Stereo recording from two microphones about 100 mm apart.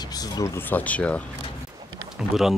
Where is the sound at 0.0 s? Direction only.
40° left (ahead or behind).